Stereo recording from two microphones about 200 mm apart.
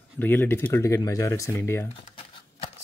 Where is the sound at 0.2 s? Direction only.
10° left (ahead or behind).